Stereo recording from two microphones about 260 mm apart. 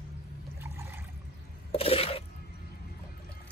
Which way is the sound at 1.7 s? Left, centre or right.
Left.